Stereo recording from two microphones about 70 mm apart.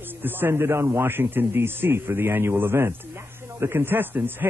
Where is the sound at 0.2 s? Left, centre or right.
Right.